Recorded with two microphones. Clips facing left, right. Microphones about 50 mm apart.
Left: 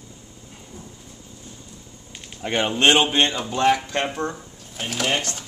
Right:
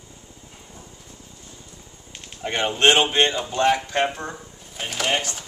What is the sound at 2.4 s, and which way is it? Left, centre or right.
Speech, centre.